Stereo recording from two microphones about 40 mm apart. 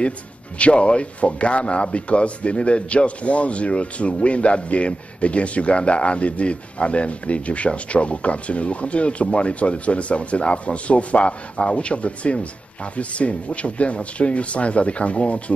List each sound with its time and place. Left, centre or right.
0.6 s a man's voice: left